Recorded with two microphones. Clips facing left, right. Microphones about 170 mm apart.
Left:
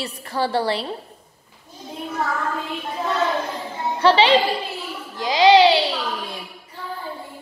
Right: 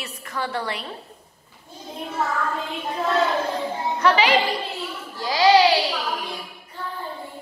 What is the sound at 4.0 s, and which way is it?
A woman's voice, 30° left (ahead or behind).